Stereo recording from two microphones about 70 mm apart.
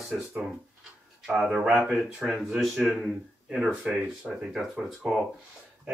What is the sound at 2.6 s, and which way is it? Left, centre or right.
Speech, centre.